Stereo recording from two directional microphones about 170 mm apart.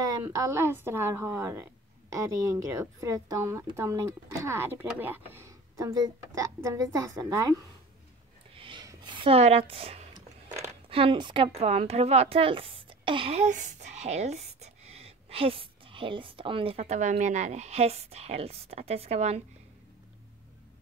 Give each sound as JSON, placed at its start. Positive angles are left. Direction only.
{"t": 0.2, "sound": "a woman's voice", "side_deg": -20}
{"t": 8.5, "sound": "a sound", "side_deg": -30}
{"t": 10.9, "sound": "speech", "side_deg": -30}